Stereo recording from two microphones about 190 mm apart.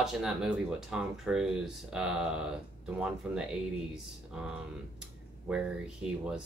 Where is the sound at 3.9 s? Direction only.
5° right (ahead or behind).